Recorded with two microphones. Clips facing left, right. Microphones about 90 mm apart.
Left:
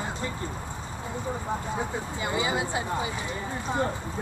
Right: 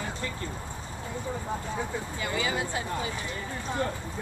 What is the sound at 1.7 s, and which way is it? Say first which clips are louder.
Speech: left 2 dB; 20° left (ahead or behind).